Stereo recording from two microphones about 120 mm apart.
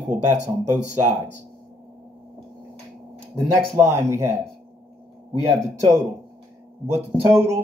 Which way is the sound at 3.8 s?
20° right (ahead or behind).